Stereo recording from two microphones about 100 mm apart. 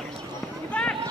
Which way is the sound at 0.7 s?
10° left (ahead or behind).